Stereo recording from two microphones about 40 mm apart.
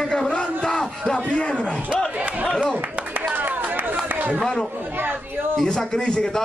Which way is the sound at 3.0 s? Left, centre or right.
Right.